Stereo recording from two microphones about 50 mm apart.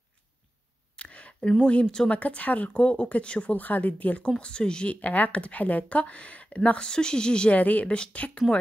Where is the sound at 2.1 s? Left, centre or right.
Left.